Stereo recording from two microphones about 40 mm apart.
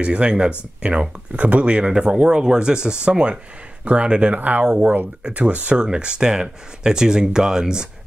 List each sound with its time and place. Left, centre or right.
0.0 s speech: right
4.4 s speech: right
5.8 s speech: right